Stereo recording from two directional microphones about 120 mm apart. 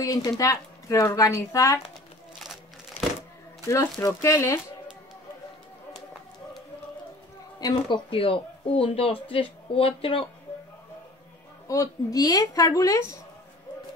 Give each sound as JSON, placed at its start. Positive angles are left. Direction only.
{"t": 0.0, "sound": "a woman's voice", "side_deg": 30}
{"t": 3.2, "sound": "speech", "side_deg": 25}
{"t": 7.6, "sound": "speech", "side_deg": 45}
{"t": 11.6, "sound": "a woman's voice", "side_deg": 25}